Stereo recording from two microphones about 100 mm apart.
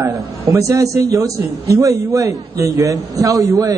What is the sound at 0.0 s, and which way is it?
A man's voice, 30° right (ahead or behind).